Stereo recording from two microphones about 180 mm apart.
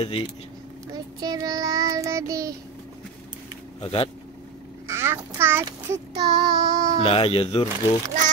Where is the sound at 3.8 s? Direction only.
30° left (ahead or behind).